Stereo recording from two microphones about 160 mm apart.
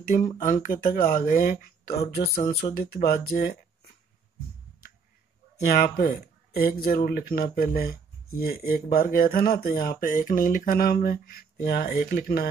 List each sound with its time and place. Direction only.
0.4 s speech: 55° left (ahead or behind); by 3.5 s 70° left (ahead or behind)
5.7 s speech: 70° left (ahead or behind)